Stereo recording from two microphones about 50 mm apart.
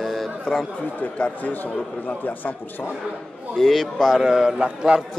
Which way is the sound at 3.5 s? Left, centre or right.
Centre.